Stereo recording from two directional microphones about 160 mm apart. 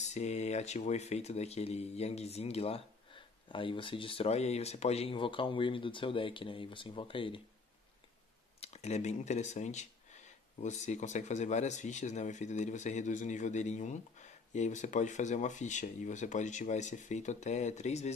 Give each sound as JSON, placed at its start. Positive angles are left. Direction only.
{"t": 0.0, "sound": "speech", "side_deg": 45}
{"t": 8.5, "sound": "speech", "side_deg": 45}